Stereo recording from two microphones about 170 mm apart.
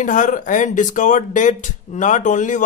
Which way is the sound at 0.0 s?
50° left (ahead or behind).